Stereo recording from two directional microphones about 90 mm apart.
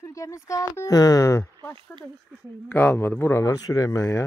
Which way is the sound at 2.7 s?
20° left (ahead or behind).